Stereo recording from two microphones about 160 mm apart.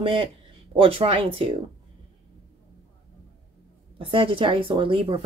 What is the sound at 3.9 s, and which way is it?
A woman's voice, 35° right (ahead or behind).